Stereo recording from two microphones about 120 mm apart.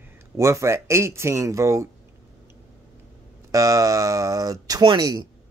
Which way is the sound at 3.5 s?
30° right (ahead or behind).